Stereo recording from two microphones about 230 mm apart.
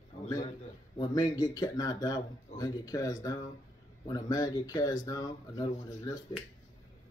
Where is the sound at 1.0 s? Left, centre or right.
Centre.